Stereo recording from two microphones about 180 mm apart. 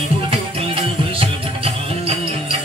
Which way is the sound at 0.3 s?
30° right (ahead or behind).